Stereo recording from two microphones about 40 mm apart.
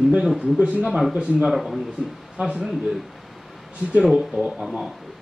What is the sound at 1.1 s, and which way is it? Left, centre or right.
Speech, right.